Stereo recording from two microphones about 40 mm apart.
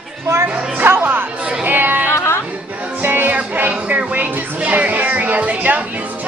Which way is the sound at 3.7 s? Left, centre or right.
Right.